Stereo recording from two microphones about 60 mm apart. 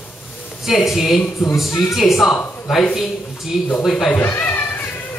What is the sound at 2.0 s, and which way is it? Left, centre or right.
A woman's voice, centre.